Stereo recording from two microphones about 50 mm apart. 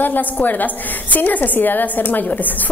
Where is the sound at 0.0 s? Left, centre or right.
Left.